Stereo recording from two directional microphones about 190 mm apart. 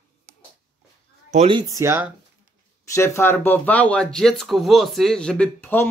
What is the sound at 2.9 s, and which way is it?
Speech, 15° left (ahead or behind).